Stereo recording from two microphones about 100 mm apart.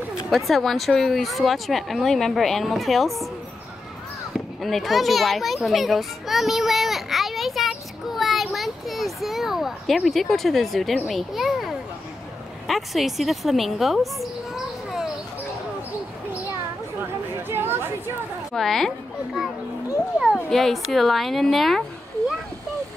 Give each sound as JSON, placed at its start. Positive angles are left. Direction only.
{"t": 0.5, "sound": "speech", "side_deg": 0}
{"t": 4.6, "sound": "children playing", "side_deg": 0}
{"t": 11.1, "sound": "a child's voice", "side_deg": 0}
{"t": 17.4, "sound": "chatter", "side_deg": -20}
{"t": 18.5, "sound": "speech", "side_deg": 5}